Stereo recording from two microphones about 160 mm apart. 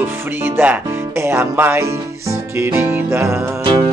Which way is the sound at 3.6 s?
30° right (ahead or behind).